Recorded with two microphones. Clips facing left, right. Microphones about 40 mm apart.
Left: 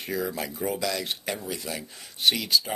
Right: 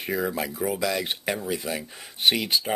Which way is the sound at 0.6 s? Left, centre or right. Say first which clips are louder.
Right 2 dB; centre.